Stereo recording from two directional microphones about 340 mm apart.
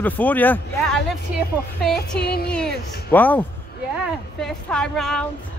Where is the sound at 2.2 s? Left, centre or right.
Left.